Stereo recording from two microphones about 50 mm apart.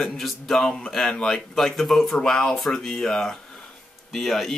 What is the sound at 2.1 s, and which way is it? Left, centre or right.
Speech, centre.